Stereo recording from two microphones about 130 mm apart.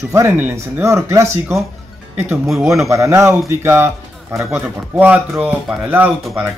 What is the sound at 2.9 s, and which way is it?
A man's voice, 20° right (ahead or behind).